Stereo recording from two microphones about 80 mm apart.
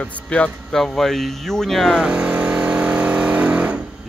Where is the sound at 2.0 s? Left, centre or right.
Centre.